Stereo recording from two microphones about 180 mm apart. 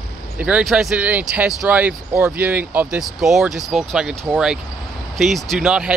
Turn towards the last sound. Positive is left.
turn(degrees=-5)  # may be behind; listen again after turning